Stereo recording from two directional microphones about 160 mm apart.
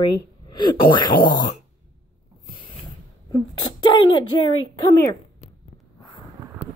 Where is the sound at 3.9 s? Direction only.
30° left (ahead or behind).